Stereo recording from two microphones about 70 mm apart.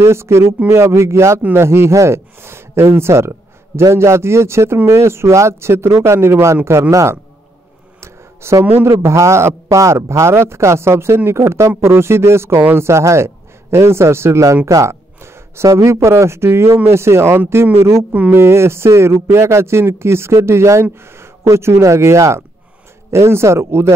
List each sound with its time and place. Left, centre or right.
0.0 s a man's voice: right
8.0 s a sound: right
8.8 s a man's voice: right